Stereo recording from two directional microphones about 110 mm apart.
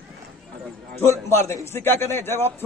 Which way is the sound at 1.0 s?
25° left (ahead or behind).